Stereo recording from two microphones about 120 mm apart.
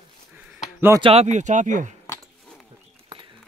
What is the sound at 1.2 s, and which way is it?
Speech, 90° right.